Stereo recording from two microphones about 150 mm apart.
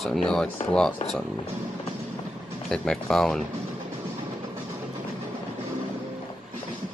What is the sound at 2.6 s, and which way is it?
Speech, 5° left (ahead or behind).